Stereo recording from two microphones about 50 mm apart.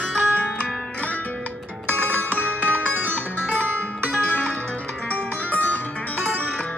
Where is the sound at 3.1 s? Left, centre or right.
Left.